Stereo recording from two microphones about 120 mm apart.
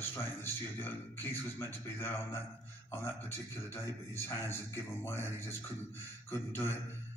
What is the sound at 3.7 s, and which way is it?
A man's voice, 20° left (ahead or behind).